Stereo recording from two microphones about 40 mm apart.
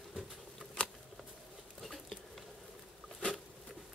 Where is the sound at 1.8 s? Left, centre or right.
Centre.